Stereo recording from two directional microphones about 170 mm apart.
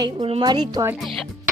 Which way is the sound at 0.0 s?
30° right (ahead or behind).